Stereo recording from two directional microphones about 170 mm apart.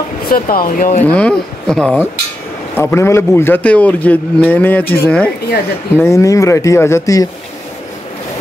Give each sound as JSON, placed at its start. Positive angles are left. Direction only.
{"t": 0.3, "sound": "speech", "side_deg": 60}
{"t": 1.1, "sound": "speech", "side_deg": 5}
{"t": 2.8, "sound": "a man's voice", "side_deg": 15}